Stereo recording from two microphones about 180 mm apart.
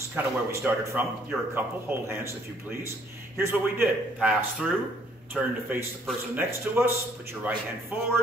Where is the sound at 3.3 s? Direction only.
10° right (ahead or behind).